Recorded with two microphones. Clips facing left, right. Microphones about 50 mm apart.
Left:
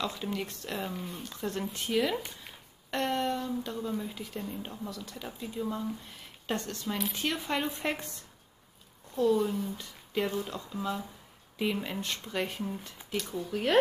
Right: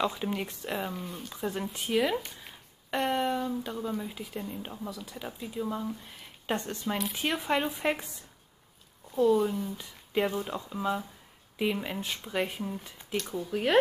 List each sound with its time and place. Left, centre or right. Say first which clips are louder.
0.0 s speech: right 4 dB; centre
6.5 s speech: right 2 dB; centre
10.4 s speech: right 3 dB; centre